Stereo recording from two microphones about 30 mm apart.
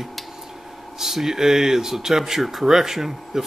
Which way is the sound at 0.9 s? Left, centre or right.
Centre.